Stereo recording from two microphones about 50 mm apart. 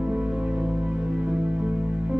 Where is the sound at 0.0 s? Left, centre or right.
Right.